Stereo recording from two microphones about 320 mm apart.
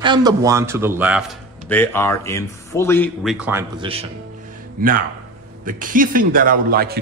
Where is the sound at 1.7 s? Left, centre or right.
Centre.